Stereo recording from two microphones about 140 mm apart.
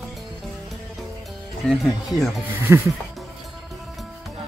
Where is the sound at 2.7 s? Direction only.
20° right (ahead or behind).